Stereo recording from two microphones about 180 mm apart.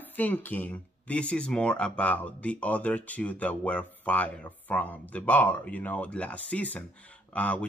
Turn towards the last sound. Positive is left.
turn(degrees=10)  # may be behind; listen again after turning